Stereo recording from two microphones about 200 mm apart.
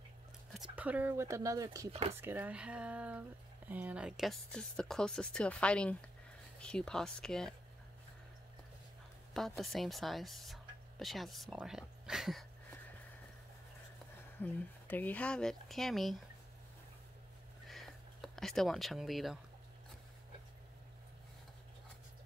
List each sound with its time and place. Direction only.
0.5 s speech: 5° right (ahead or behind)
1.9 s speech: 30° right (ahead or behind)
2.2 s speech: 10° right (ahead or behind)
9.3 s speech: centre (ahead or behind)
14.4 s speech: 10° left (ahead or behind)
17.6 s a sound: centre (ahead or behind)